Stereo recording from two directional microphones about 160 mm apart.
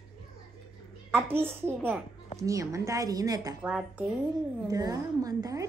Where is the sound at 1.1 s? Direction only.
15° right (ahead or behind).